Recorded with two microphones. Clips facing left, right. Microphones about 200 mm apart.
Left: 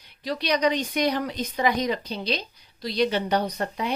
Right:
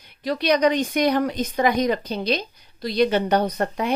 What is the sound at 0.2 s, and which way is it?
A woman's voice, 50° right (ahead or behind).